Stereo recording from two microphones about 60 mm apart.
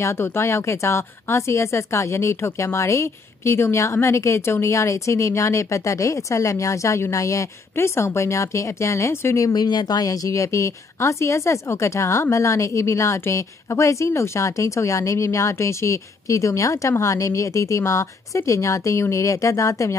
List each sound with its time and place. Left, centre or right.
0.0 s speech: left
7.7 s speech: left
9.4 s speech: left